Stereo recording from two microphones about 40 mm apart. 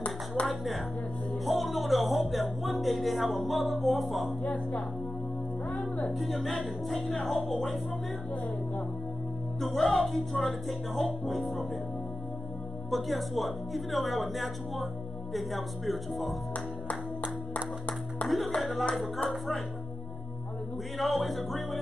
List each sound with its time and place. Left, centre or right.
0.5 s speech: centre
5.7 s music: centre
6.0 s speech: centre
9.6 s speech: centre
12.9 s speech: centre
18.2 s speech: left
18.6 s speech: centre
21.0 s speech: centre